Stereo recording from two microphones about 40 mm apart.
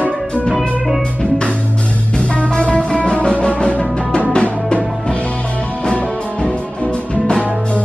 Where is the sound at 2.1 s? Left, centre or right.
Left.